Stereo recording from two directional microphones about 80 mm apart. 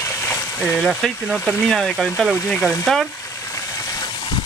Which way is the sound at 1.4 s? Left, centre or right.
Left.